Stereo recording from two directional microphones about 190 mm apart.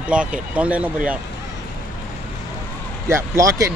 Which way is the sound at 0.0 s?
5° right (ahead or behind).